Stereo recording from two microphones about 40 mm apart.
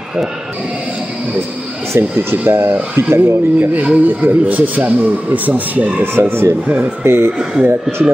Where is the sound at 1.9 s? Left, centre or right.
Right.